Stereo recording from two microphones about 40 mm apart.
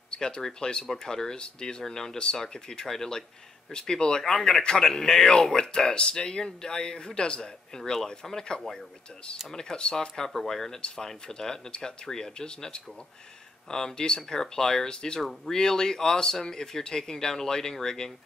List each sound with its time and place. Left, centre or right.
0.1 s speech: left
8.7 s speech: left